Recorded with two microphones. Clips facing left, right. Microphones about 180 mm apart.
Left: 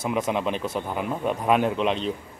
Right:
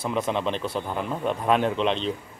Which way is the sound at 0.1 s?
10° left (ahead or behind).